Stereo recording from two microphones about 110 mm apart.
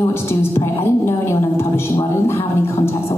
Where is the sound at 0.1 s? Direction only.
25° left (ahead or behind).